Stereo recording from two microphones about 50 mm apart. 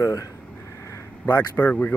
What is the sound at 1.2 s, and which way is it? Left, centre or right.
Speech, left.